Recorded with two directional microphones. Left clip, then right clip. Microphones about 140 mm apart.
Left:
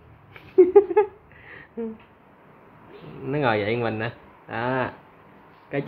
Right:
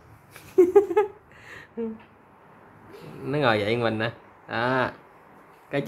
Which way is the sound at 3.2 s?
10° right (ahead or behind).